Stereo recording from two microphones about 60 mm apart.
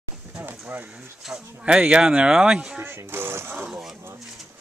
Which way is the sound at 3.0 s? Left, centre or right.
Right.